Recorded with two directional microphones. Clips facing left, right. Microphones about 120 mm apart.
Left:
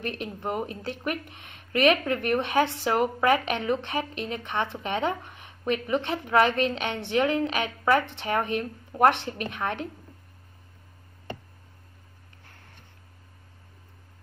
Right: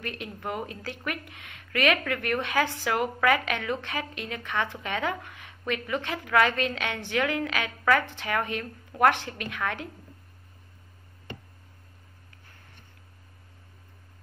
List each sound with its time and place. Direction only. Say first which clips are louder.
0.0 s speech: left 3 dB; 20° left (ahead or behind)